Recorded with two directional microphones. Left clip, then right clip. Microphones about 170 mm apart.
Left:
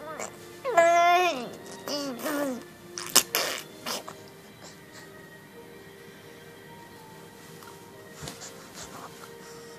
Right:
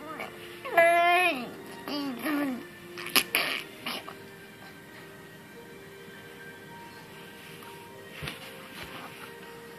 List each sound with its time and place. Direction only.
0.2 s babbling: 15° left (ahead or behind)